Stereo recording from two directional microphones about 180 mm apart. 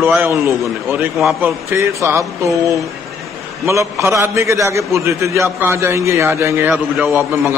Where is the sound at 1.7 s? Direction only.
15° right (ahead or behind).